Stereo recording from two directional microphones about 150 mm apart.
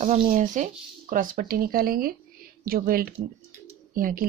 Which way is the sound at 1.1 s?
70° right (ahead or behind).